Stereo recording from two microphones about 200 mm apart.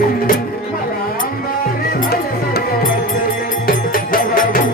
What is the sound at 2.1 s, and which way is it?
Music, 50° left (ahead or behind).